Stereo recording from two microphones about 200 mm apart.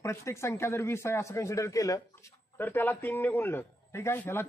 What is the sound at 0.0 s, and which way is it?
A man's voice, 15° left (ahead or behind).